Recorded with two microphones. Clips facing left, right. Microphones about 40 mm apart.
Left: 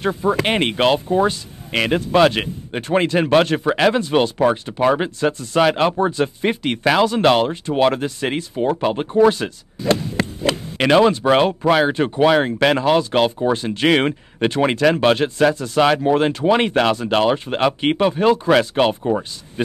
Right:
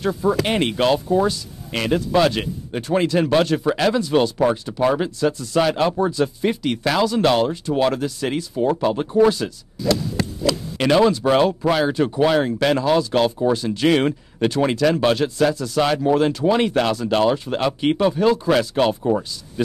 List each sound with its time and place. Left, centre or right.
0.0 s speech: left